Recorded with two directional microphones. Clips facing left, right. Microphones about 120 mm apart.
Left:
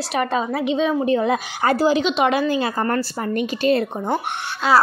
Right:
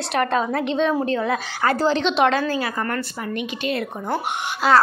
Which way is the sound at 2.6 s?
30° left (ahead or behind).